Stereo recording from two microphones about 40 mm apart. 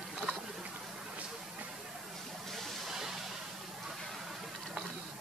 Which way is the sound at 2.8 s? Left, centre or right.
Centre.